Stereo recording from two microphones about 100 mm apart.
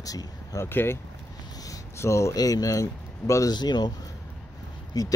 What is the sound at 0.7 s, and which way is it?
Speech, 20° left (ahead or behind).